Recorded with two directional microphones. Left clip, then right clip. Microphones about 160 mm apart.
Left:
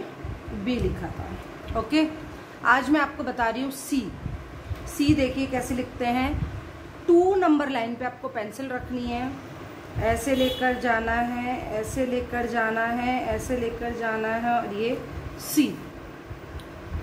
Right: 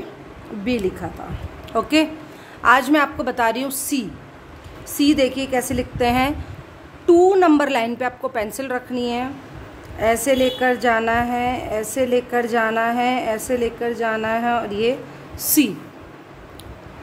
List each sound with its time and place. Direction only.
0.7 s a woman's voice: 90° right
2.6 s a woman's voice: 75° right (ahead or behind); by 15.7 s 90° right